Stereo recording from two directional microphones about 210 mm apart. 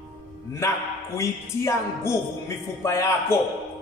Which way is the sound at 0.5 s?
15° left (ahead or behind).